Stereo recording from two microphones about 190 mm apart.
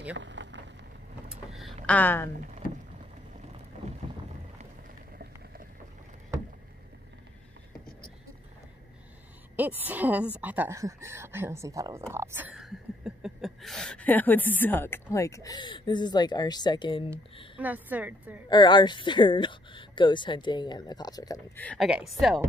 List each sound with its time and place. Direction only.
0.1 s rain: 75° right (ahead or behind)
1.6 s a sound: 5° left (ahead or behind)
9.6 s a woman's voice: 10° right (ahead or behind)
12.1 s a sound: 10° right (ahead or behind); by 15.0 s 10° left (ahead or behind)
15.1 s speech: 15° left (ahead or behind)
17.6 s a woman's voice: 10° right (ahead or behind)
18.5 s speech: 25° left (ahead or behind)
21.6 s speech: centre (ahead or behind)